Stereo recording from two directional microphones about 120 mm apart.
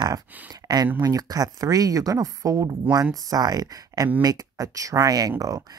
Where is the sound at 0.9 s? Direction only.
30° right (ahead or behind).